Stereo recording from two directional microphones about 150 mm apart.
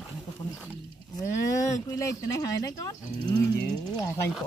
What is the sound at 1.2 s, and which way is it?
Speech, 20° left (ahead or behind).